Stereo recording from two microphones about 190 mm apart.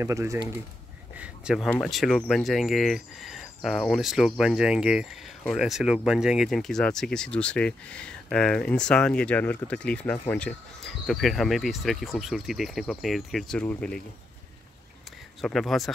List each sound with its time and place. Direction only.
0.0 s speech: 15° right (ahead or behind)
1.1 s a sound: 5° right (ahead or behind)
1.7 s speech: centre (ahead or behind)
15.4 s speech: centre (ahead or behind)